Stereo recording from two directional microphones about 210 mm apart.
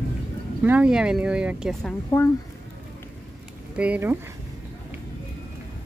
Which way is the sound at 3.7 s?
5° right (ahead or behind).